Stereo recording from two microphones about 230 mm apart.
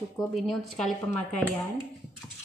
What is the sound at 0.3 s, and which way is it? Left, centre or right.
Speech, centre.